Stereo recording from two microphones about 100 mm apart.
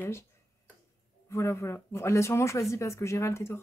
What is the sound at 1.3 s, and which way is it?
Speech, 30° left (ahead or behind).